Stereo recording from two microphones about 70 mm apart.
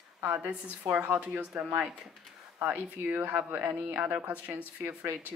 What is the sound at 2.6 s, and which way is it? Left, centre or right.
Speech, right.